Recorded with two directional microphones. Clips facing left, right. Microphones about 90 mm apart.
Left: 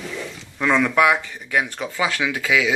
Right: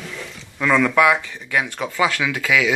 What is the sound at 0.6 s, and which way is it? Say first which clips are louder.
Speech: right 1 dB; 20° left (ahead or behind).